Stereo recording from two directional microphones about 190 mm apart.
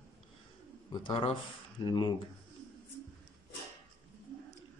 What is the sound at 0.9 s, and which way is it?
A man's voice, 25° left (ahead or behind).